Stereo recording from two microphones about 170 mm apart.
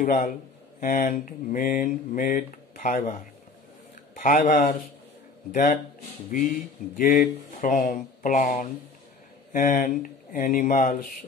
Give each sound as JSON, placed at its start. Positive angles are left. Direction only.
{"t": 0.0, "sound": "speech", "side_deg": 55}
{"t": 4.2, "sound": "speech", "side_deg": 50}
{"t": 7.0, "sound": "speech", "side_deg": 55}